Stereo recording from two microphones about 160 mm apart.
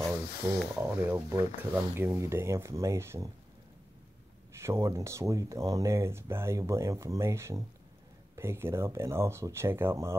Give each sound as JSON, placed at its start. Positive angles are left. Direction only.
{"t": 0.4, "sound": "speech", "side_deg": -15}
{"t": 4.6, "sound": "speech", "side_deg": -15}